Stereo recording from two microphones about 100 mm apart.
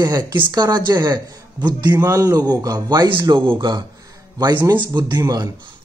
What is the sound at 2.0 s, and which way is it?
Speech, 30° right (ahead or behind).